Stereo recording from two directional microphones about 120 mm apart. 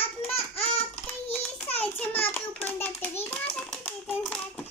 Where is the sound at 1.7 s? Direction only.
15° left (ahead or behind).